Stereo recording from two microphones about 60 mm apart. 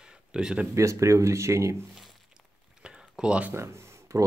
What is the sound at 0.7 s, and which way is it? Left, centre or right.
Speech, right.